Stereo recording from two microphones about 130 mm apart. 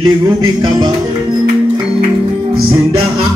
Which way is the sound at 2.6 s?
40° right (ahead or behind).